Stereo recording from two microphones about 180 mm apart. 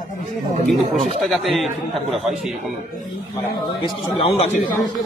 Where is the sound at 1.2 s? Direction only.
Centre (ahead or behind).